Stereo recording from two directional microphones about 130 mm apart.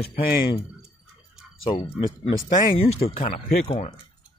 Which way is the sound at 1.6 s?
40° left (ahead or behind).